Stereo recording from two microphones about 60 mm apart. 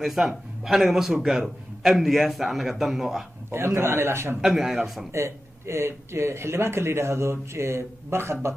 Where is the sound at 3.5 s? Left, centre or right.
Right.